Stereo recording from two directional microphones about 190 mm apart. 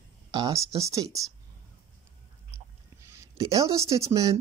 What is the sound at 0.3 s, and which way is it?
Speech, 20° right (ahead or behind).